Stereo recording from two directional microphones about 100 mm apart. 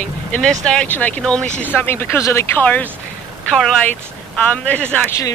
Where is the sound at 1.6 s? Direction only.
25° left (ahead or behind).